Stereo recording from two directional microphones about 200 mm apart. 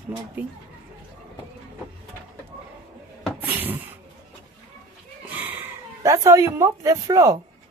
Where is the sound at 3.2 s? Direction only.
10° right (ahead or behind).